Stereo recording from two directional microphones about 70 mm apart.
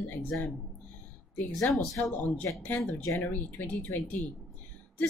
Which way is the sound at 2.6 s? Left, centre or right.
Left.